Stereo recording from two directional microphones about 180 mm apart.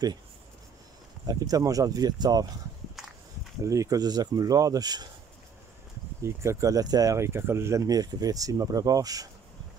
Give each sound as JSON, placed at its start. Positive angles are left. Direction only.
{"t": 1.2, "sound": "speech", "side_deg": -20}
{"t": 3.6, "sound": "speech", "side_deg": -20}
{"t": 6.2, "sound": "speech", "side_deg": -15}